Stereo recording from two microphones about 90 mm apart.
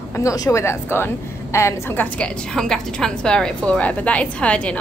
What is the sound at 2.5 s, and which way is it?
A woman's voice, 5° left (ahead or behind).